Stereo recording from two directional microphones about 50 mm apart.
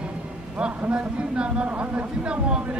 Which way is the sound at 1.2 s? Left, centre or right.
Right.